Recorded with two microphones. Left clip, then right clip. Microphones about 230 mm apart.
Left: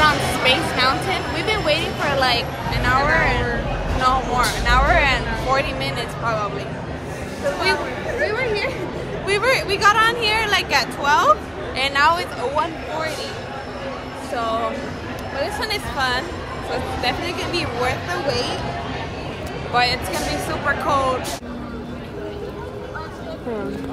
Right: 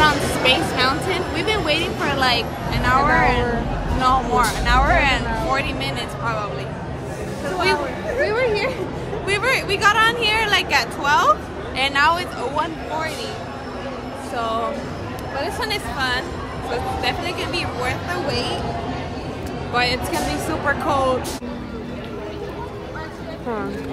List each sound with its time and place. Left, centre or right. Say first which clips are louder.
0.0 s a sound: even; centre
4.0 s speech: right 1 dB; centre
8.2 s speech: right 2 dB; right
9.3 s speech: left 1 dB; centre
14.3 s speech: left 1 dB; centre
19.7 s speech: left 1 dB; centre